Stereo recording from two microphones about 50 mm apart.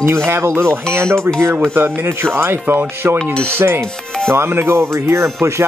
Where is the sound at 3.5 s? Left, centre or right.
Right.